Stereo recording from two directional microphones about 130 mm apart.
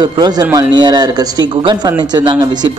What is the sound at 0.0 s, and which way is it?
A man's voice, 35° right (ahead or behind).